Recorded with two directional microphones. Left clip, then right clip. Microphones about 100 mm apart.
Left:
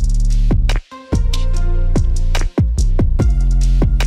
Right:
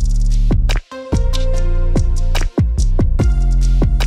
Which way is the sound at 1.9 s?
20° left (ahead or behind).